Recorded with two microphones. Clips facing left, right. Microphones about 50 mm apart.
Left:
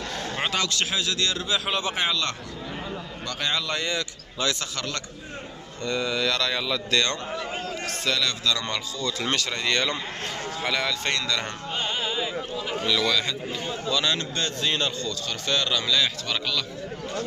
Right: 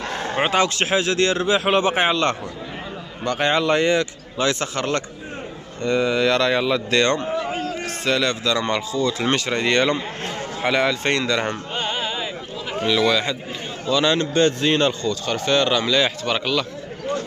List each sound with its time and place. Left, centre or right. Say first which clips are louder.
0.1 s a man's voice: right 8 dB; right
7.2 s a sound: right 7 dB; centre
7.7 s a man's voice: right 4 dB; right